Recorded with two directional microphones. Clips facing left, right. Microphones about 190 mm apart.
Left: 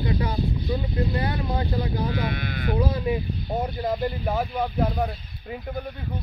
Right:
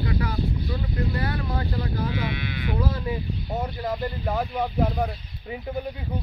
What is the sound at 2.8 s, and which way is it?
Speech, 20° left (ahead or behind).